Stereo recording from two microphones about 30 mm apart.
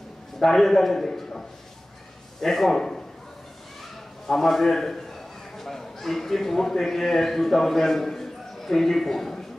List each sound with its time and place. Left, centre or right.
0.4 s a man's voice: centre
2.4 s a man's voice: centre
4.3 s a man's voice: centre